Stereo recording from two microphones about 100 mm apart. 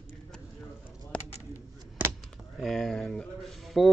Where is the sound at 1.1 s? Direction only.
10° left (ahead or behind).